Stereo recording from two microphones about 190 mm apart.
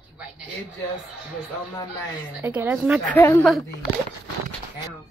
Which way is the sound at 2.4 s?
10° right (ahead or behind).